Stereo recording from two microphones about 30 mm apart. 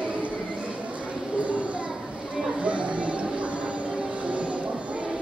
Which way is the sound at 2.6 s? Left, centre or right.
Right.